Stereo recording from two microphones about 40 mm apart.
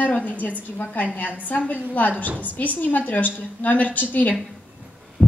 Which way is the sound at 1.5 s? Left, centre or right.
Left.